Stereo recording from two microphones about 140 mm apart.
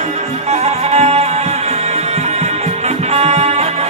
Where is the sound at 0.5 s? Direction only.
50° right (ahead or behind).